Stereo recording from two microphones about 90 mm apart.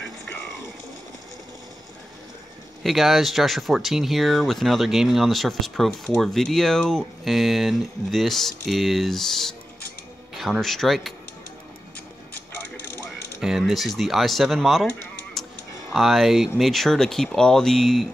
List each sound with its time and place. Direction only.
2.8 s speech: centre (ahead or behind)
12.4 s a sound: 20° left (ahead or behind)
13.4 s speech: 5° right (ahead or behind)
15.4 s music: centre (ahead or behind)
15.9 s speech: centre (ahead or behind)